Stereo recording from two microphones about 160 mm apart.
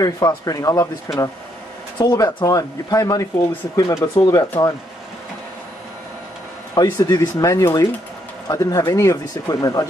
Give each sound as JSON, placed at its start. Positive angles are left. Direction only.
{"t": 0.0, "sound": "speech", "side_deg": 20}
{"t": 6.7, "sound": "speech", "side_deg": 20}